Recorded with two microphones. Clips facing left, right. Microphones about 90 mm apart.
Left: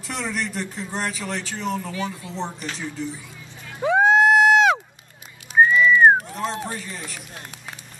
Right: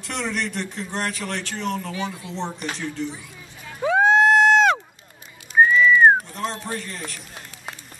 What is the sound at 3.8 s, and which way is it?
Music, centre (ahead or behind).